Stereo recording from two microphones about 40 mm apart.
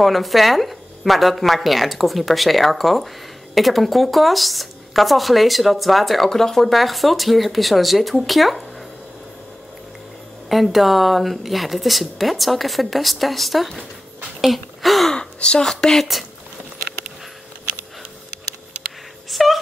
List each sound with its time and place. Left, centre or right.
0.0 s speech: centre
10.5 s speech: centre
14.4 s gasp: centre
15.3 s a sound: left
15.6 s speech: centre
19.3 s speech: centre